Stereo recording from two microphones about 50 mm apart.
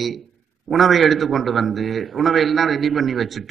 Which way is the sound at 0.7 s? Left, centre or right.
Centre.